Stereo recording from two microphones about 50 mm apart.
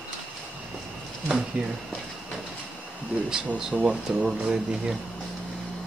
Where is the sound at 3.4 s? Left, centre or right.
Centre.